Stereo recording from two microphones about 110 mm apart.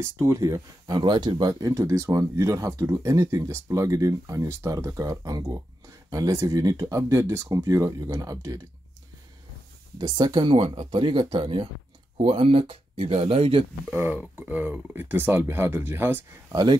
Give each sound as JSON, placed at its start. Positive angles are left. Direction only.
{"t": 0.0, "sound": "speech", "side_deg": -25}
{"t": 1.5, "sound": "speech", "side_deg": -30}
{"t": 9.9, "sound": "speech", "side_deg": -40}
{"t": 13.8, "sound": "speech", "side_deg": -20}